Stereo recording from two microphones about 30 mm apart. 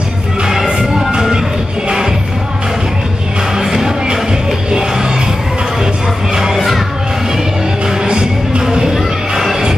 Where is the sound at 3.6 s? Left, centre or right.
Centre.